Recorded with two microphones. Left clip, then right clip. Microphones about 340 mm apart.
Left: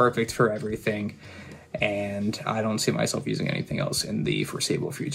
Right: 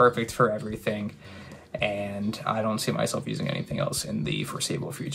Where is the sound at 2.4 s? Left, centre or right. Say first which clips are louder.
Even; centre.